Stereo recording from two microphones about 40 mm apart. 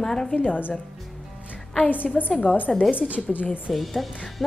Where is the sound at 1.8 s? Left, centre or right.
Left.